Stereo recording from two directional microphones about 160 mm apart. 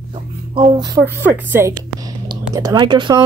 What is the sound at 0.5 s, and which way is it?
Speech, 30° right (ahead or behind).